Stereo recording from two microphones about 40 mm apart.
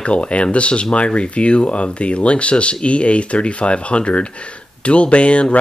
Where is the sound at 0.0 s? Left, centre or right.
Left.